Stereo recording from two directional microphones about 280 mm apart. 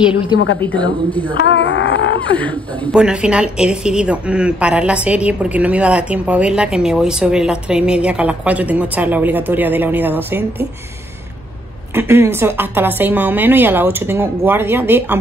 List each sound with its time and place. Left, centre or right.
0.6 s a woman's voice: centre
1.4 s a sound: left
2.3 s a woman's voice: centre
11.9 s a woman's voice: centre